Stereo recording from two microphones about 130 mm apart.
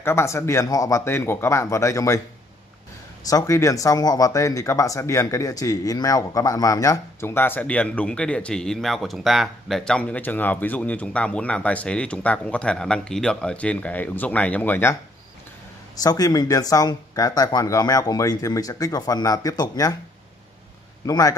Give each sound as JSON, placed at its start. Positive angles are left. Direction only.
{"t": 0.0, "sound": "speech", "side_deg": 20}
{"t": 3.3, "sound": "speech", "side_deg": 25}
{"t": 16.0, "sound": "speech", "side_deg": 30}
{"t": 21.0, "sound": "a man's voice", "side_deg": 25}